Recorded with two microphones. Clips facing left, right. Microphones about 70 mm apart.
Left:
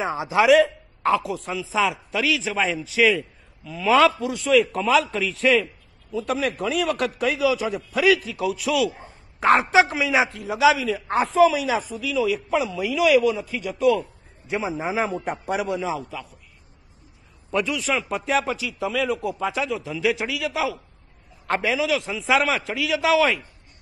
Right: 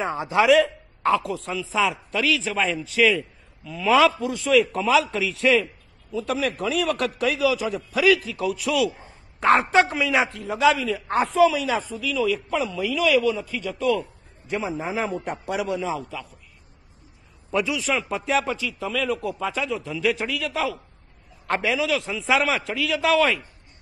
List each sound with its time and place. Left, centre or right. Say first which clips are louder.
0.0 s a man's voice: left 1 dB; centre
17.5 s speech: even; centre